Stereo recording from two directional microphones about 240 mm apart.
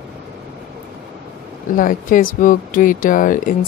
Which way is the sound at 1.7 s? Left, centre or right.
Left.